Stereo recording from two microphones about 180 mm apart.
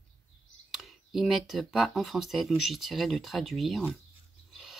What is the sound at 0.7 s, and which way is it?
Speech, centre (ahead or behind).